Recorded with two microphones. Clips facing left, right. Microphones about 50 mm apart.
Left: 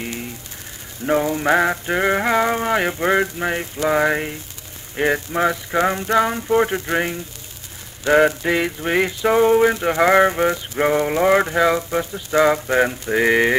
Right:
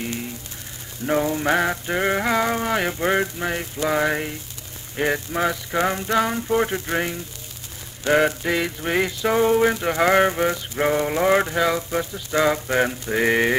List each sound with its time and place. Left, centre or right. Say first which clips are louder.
0.0 s a sound: even; centre
1.2 s mantra: left 3 dB; centre
8.1 s mantra: left 4 dB; centre